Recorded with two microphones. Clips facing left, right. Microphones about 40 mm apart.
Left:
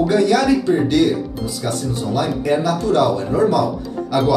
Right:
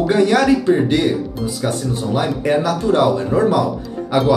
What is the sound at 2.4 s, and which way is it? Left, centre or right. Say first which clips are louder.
Speech: right 1 dB; right.